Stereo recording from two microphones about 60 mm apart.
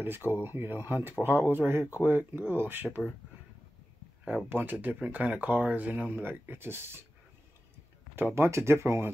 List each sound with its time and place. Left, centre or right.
0.0 s speech: right
4.5 s speech: right
8.4 s speech: right